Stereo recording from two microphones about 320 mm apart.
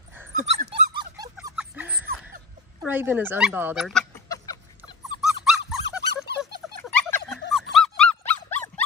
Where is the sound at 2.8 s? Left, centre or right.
Centre.